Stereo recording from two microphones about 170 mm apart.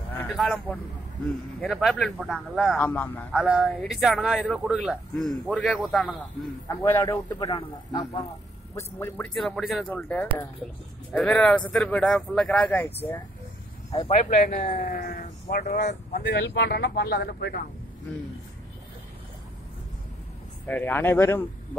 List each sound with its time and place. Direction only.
0.3 s a man's voice: centre (ahead or behind)
2.8 s speech: 10° left (ahead or behind)
3.3 s a man's voice: 5° right (ahead or behind)
6.8 s speech: 15° left (ahead or behind)
8.7 s speech: 10° left (ahead or behind)
14.0 s speech: 40° left (ahead or behind)
14.8 s speech: 60° left (ahead or behind)
20.6 s speech: 10° left (ahead or behind)